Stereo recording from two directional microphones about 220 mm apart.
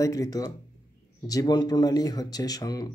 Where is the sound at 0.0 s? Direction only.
15° left (ahead or behind).